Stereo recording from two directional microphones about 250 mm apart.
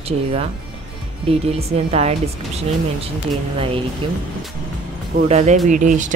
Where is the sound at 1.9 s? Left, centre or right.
Right.